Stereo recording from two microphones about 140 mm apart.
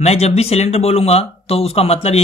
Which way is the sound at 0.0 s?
50° left (ahead or behind).